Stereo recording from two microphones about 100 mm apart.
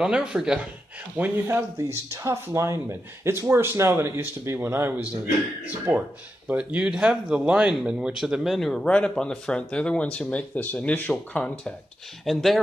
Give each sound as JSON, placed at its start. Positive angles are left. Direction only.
{"t": 0.0, "sound": "speech", "side_deg": -5}
{"t": 1.5, "sound": "speech", "side_deg": -30}